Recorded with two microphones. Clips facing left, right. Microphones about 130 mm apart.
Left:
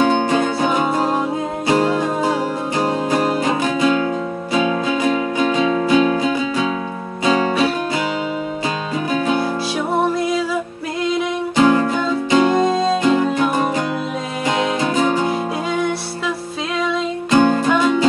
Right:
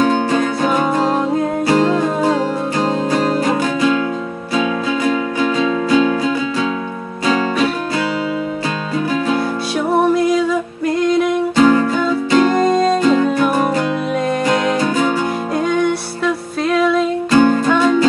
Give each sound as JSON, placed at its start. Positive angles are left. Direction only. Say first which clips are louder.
{"t": 0.0, "sound": "music", "louder": "right 1 dB", "side_deg": 20}
{"t": 11.5, "sound": "music", "louder": "right 1 dB", "side_deg": 15}
{"t": 12.4, "sound": "music", "louder": "right 2 dB", "side_deg": 0}
{"t": 13.3, "sound": "music", "louder": "right 3 dB", "side_deg": 20}
{"t": 16.7, "sound": "music", "louder": "right 6 dB", "side_deg": 0}
{"t": 17.3, "sound": "music", "louder": "right 1 dB", "side_deg": 15}